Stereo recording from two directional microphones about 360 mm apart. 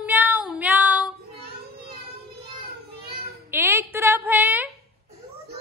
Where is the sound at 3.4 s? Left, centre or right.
Centre.